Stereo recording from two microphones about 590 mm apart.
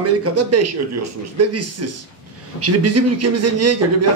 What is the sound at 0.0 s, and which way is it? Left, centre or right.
Speech, right.